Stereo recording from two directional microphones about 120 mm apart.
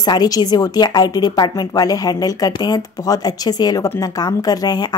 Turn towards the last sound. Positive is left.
turn(degrees=35)  # may be behind; listen again after turning